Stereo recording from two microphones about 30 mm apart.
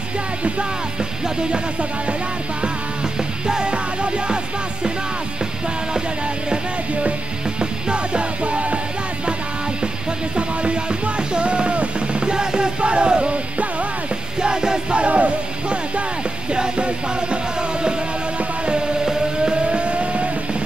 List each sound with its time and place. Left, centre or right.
3.4 s music: right
3.7 s music: right
7.9 s music: right
10.3 s music: right
12.3 s music: right
14.4 s music: right
15.0 s music: right
16.5 s music: right
19.7 s music: right